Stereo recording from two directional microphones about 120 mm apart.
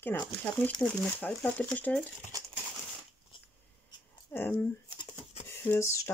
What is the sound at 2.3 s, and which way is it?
Crumpling, 30° right (ahead or behind).